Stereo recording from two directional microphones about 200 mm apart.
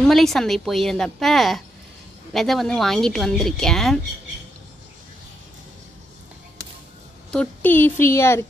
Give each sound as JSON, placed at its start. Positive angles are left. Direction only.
{"t": 0.0, "sound": "speech", "side_deg": 0}
{"t": 7.2, "sound": "a woman's voice", "side_deg": 5}